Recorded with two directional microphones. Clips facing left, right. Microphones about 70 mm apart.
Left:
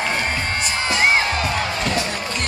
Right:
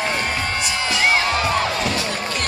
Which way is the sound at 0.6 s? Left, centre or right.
Left.